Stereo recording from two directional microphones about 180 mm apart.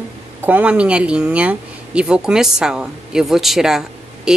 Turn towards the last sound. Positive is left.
turn(degrees=0)  # may be behind; listen again after turning